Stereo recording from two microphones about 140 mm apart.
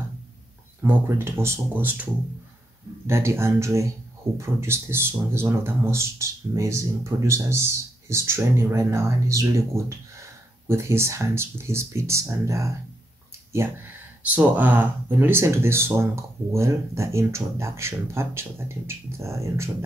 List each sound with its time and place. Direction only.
0.8 s speech: 15° right (ahead or behind)
3.1 s speech: 20° right (ahead or behind)
14.2 s speech: 10° right (ahead or behind)